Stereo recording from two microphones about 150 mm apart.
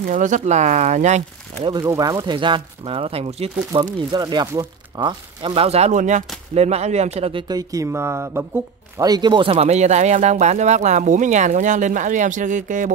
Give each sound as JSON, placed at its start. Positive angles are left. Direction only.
{"t": 0.0, "sound": "speech", "side_deg": -55}
{"t": 1.6, "sound": "speech", "side_deg": -25}
{"t": 3.8, "sound": "speech", "side_deg": -30}
{"t": 7.4, "sound": "speech", "side_deg": -25}